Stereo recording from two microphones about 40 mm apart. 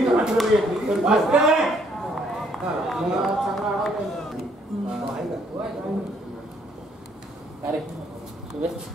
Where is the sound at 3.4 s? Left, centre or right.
Centre.